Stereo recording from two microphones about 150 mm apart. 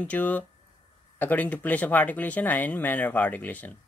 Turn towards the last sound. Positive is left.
turn(degrees=10)  # may be behind; listen again after turning